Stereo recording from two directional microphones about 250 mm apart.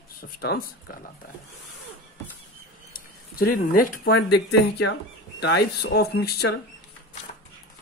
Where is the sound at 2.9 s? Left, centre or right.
Left.